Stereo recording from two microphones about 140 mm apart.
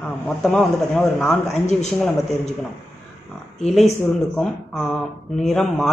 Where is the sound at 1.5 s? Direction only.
55° left (ahead or behind).